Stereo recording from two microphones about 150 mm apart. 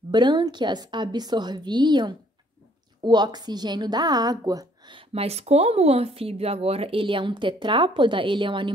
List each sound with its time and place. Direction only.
0.1 s a woman's voice: 30° right (ahead or behind)